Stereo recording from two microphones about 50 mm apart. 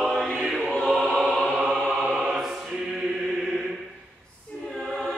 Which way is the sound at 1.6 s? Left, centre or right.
Right.